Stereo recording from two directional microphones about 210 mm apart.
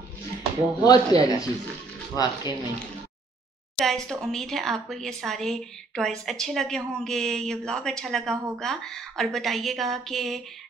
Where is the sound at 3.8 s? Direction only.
Centre (ahead or behind).